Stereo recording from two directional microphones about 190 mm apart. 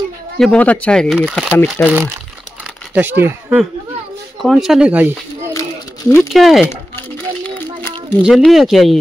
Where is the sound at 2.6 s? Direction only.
10° right (ahead or behind).